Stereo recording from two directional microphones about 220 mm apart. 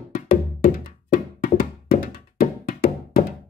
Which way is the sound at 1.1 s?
40° left (ahead or behind).